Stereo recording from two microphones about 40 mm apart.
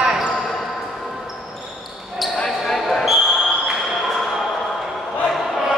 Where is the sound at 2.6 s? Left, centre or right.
Centre.